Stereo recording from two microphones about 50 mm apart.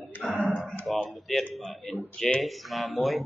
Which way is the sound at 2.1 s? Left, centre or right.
Centre.